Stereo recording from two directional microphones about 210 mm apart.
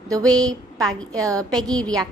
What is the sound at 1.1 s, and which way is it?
Speech, 15° right (ahead or behind).